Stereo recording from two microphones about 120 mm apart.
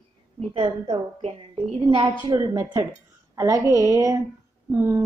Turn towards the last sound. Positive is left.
turn(degrees=-20)  # may be behind; listen again after turning